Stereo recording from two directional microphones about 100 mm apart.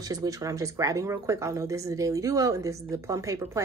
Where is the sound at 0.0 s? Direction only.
40° right (ahead or behind).